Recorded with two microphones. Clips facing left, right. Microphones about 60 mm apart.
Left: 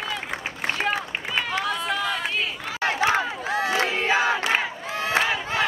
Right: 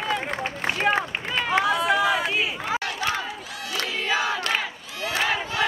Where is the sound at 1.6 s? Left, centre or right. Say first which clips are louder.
Right 5 dB; centre.